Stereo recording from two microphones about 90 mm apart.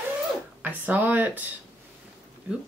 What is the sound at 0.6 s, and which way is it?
Speech, 20° right (ahead or behind).